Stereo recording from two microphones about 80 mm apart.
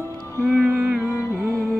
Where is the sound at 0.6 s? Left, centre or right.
Centre.